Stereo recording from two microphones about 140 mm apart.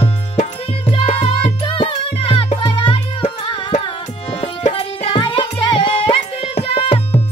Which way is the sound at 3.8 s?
35° left (ahead or behind).